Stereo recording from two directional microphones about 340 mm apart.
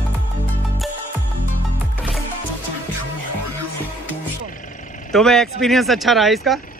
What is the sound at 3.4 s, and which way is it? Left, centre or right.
Music, right.